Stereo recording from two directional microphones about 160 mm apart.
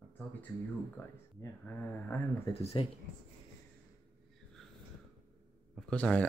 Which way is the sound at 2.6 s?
40° left (ahead or behind).